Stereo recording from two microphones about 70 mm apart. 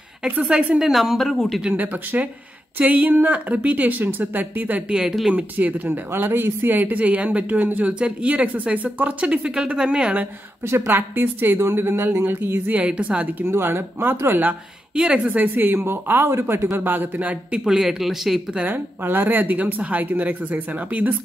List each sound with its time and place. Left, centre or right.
0.4 s a woman's voice: centre
1.6 s speech: right
4.9 s speech: centre
5.3 s speech: right
10.7 s speech: right
12.7 s speech: centre
13.5 s speech: right
15.0 s speech: centre
17.6 s a woman's voice: centre
18.6 s speech: right